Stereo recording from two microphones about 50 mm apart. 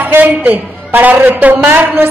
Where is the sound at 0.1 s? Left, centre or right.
Right.